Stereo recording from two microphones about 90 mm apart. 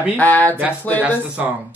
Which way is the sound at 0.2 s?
20° left (ahead or behind).